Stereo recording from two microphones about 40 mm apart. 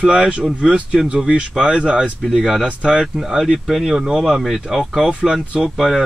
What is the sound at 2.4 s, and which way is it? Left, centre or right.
Speech, centre.